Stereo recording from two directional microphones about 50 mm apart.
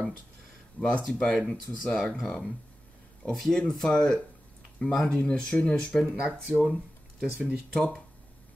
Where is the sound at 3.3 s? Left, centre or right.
Centre.